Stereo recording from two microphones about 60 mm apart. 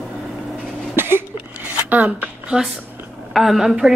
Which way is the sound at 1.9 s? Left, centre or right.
Right.